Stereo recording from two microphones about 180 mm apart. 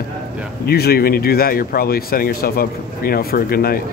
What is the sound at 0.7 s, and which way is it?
Speech, 60° left (ahead or behind).